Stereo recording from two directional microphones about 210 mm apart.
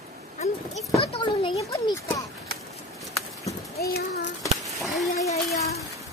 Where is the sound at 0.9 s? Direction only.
25° left (ahead or behind).